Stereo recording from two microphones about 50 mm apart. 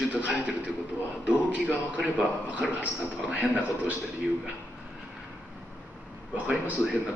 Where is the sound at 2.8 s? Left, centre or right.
Right.